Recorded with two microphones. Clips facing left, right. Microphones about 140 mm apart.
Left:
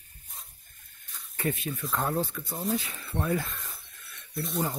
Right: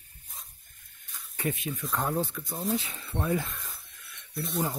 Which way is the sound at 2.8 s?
20° right (ahead or behind).